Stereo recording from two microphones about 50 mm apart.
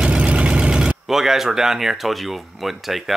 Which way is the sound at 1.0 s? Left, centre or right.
Centre.